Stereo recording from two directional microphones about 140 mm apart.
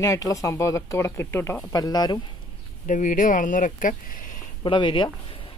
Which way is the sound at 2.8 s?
65° left (ahead or behind).